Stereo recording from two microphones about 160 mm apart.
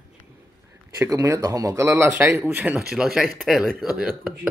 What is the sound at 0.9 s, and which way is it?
Speech, 20° right (ahead or behind).